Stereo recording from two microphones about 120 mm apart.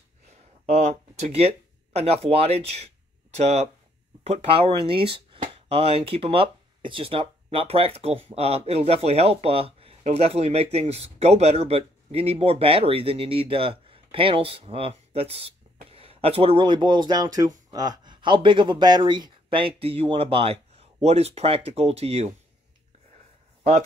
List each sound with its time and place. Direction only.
0.7 s speech: 70° right (ahead or behind)
4.2 s speech: 55° right (ahead or behind)